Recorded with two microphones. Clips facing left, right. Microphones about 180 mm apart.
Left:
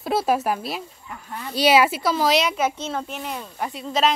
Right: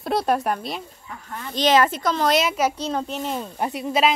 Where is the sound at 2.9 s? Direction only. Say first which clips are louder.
Right 3 dB; 20° right (ahead or behind).